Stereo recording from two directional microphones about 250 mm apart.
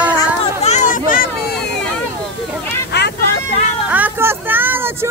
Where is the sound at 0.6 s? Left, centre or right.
Left.